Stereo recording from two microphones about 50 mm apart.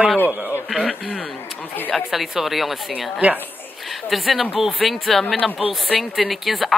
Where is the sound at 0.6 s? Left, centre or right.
Centre.